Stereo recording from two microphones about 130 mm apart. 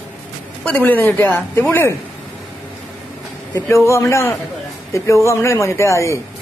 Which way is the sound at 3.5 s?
20° left (ahead or behind).